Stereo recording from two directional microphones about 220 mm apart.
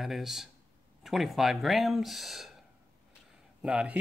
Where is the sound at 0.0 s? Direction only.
Centre (ahead or behind).